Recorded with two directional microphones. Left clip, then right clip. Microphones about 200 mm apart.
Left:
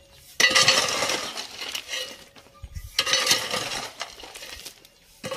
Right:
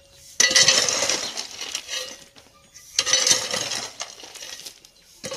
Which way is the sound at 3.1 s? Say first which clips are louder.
Right 2 dB; 10° left (ahead or behind).